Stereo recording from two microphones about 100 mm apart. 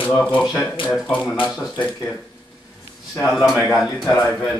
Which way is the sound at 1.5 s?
Centre (ahead or behind).